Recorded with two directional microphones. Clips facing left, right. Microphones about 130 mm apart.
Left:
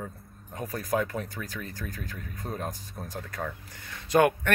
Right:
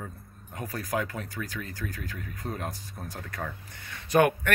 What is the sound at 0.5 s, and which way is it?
Speech, 20° left (ahead or behind).